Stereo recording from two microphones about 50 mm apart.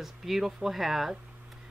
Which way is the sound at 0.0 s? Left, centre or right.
Centre.